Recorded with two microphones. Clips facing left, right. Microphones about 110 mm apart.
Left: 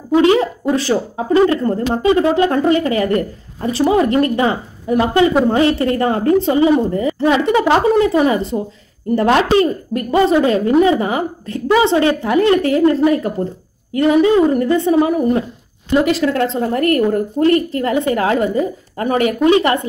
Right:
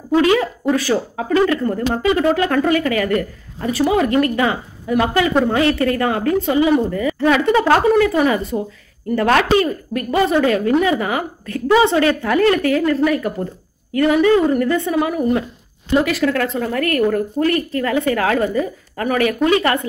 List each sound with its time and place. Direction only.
0.1 s a woman's voice: 25° left (ahead or behind)